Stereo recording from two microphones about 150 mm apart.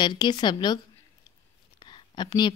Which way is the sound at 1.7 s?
30° left (ahead or behind).